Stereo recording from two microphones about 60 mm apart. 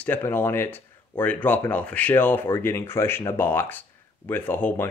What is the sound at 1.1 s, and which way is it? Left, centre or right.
Speech, left.